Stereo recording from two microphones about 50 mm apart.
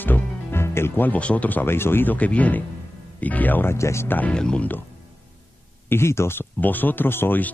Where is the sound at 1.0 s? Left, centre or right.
Left.